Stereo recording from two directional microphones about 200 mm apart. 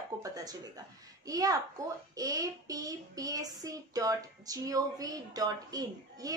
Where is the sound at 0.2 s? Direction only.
20° right (ahead or behind).